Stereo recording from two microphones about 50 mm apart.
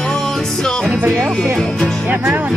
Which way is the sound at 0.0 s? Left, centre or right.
Centre.